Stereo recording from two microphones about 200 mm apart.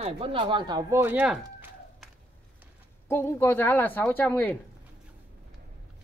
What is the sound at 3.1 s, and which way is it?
A woman's voice, 10° left (ahead or behind).